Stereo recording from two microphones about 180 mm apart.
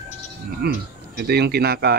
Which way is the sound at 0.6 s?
60° right (ahead or behind).